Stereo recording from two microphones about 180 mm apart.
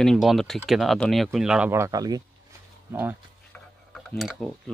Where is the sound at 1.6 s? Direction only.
15° right (ahead or behind).